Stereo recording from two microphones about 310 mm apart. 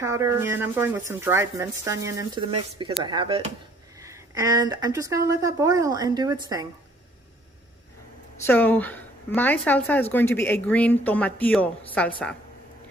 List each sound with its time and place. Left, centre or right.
0.0 s a woman's voice: centre
8.5 s speech: centre